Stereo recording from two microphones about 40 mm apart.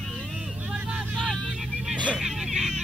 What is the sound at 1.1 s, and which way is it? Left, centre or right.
Vehicle, centre.